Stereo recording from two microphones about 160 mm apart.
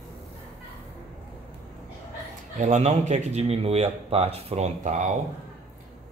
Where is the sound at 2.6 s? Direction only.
45° right (ahead or behind).